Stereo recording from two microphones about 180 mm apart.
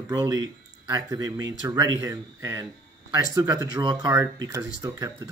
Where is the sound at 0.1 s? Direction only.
20° right (ahead or behind).